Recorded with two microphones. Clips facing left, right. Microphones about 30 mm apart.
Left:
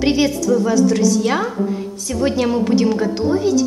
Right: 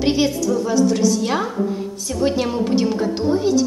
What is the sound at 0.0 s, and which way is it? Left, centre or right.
A woman's voice, centre.